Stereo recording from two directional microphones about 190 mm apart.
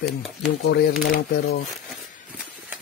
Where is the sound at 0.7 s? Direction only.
55° left (ahead or behind).